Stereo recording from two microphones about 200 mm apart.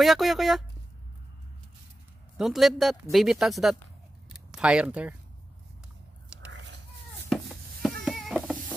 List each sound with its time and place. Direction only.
0.0 s speech: centre (ahead or behind)
2.3 s speech: centre (ahead or behind)
4.3 s a sound: 5° right (ahead or behind)
6.5 s cat: 60° right (ahead or behind)
7.2 s a sound: centre (ahead or behind)
8.0 s cat: centre (ahead or behind)